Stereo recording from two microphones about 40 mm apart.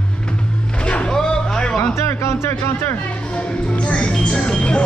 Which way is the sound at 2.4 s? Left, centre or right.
Left.